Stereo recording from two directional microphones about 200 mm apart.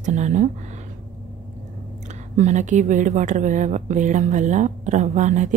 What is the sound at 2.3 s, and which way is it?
A woman's voice, 35° right (ahead or behind).